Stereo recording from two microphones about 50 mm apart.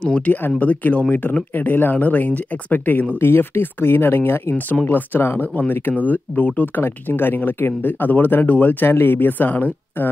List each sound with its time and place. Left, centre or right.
0.0 s speech: left
0.6 s speech: left
3.2 s speech: left